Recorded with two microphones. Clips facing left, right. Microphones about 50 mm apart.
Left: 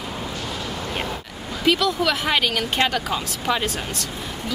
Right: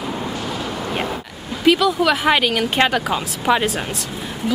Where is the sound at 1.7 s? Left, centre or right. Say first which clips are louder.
Right 5 dB; centre.